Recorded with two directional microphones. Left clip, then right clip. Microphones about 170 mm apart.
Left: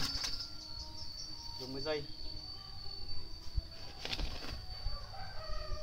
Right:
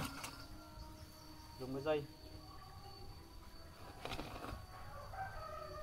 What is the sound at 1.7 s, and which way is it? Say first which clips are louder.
Speech: even; 10° right (ahead or behind).